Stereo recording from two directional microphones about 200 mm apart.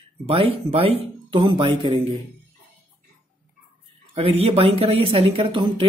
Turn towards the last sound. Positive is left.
turn(degrees=-25)  # may be behind; listen again after turning